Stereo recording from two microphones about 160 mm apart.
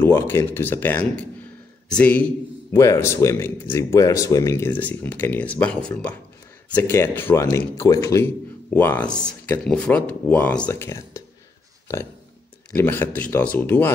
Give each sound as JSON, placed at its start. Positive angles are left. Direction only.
{"t": 0.0, "sound": "speech", "side_deg": 15}
{"t": 2.7, "sound": "speech", "side_deg": 20}
{"t": 12.7, "sound": "speech", "side_deg": 15}